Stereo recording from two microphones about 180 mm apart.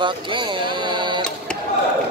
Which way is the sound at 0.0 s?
25° right (ahead or behind).